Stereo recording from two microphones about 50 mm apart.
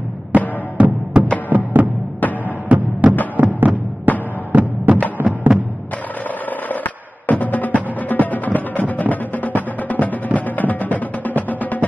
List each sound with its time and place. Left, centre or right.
0.3 s music: right
1.5 s music: right
6.7 s music: left